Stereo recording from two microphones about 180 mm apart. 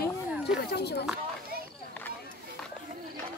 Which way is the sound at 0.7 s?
65° left (ahead or behind).